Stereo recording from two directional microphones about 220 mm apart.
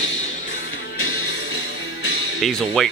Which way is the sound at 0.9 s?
70° left (ahead or behind).